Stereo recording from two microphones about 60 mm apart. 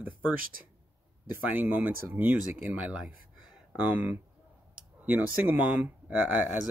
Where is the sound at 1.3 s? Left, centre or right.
Right.